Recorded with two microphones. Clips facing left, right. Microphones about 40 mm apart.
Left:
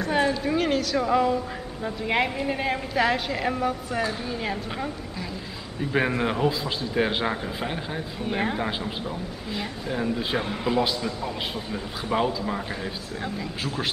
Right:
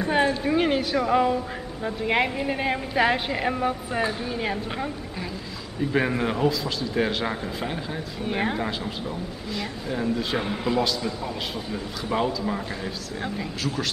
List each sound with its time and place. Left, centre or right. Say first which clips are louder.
0.0 s a woman's voice: right 1 dB; centre
5.8 s speech: right 1 dB; centre
6.5 s speech: right 1 dB; left
7.2 s speech: left 1 dB; centre
8.2 s speech: right 1 dB; centre
9.8 s speech: right 1 dB; centre